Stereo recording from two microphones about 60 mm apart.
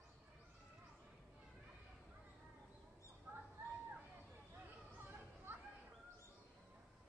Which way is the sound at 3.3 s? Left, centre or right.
Right.